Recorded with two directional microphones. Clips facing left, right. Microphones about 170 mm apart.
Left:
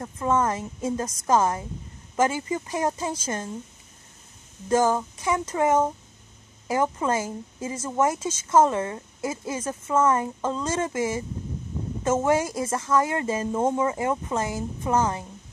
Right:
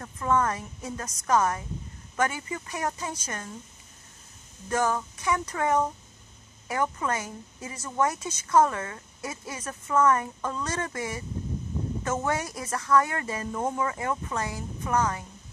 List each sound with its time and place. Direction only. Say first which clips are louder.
0.0 s speech: left 2 dB; 20° left (ahead or behind)
4.6 s speech: left 5 dB; 25° left (ahead or behind)